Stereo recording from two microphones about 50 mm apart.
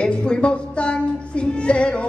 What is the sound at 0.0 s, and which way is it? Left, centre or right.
Music, centre.